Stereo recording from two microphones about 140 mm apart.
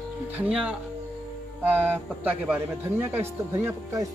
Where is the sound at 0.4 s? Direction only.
5° right (ahead or behind).